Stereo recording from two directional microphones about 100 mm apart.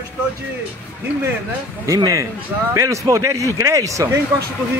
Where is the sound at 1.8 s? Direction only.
35° right (ahead or behind).